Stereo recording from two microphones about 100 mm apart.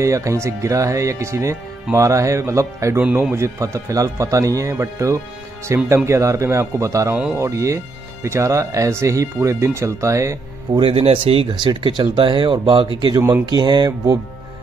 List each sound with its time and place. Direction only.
0.0 s speech: 30° right (ahead or behind)
3.0 s speech: 15° right (ahead or behind); by 10.8 s 30° right (ahead or behind)
10.8 s speech: 75° right (ahead or behind)
11.5 s speech: 50° right (ahead or behind)